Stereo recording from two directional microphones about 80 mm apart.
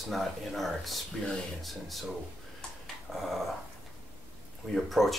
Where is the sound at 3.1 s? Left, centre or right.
Centre.